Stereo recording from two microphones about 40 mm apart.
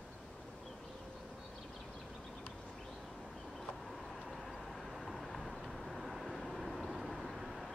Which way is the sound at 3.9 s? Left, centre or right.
Centre.